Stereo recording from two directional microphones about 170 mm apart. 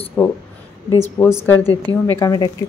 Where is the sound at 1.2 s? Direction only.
20° left (ahead or behind).